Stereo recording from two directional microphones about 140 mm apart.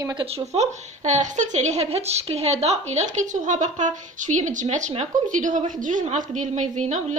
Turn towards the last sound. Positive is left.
turn(degrees=-55)  # may be behind; listen again after turning